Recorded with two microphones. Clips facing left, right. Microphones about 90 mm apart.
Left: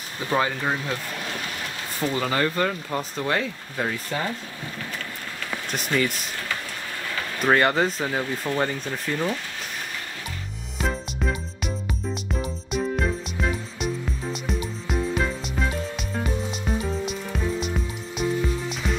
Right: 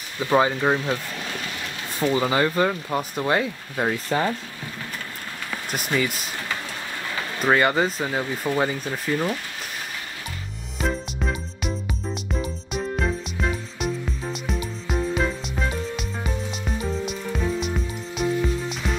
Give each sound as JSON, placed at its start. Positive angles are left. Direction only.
{"t": 0.3, "sound": "speech", "side_deg": -20}
{"t": 2.1, "sound": "speech", "side_deg": -15}
{"t": 4.1, "sound": "speech", "side_deg": -40}
{"t": 5.7, "sound": "speech", "side_deg": -5}
{"t": 7.3, "sound": "speech", "side_deg": 0}
{"t": 10.8, "sound": "music", "side_deg": 0}
{"t": 17.6, "sound": "music", "side_deg": 0}